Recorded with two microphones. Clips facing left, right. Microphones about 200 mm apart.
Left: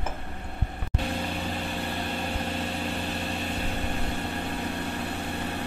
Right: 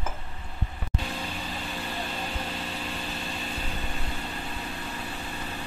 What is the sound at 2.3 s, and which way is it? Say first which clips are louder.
Vehicle: left 4 dB; 60° left (ahead or behind).